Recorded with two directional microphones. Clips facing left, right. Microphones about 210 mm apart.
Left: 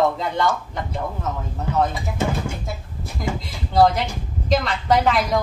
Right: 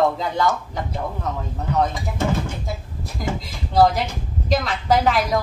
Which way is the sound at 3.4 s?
Centre (ahead or behind).